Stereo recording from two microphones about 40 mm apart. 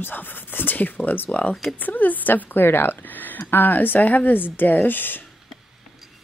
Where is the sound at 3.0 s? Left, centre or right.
Left.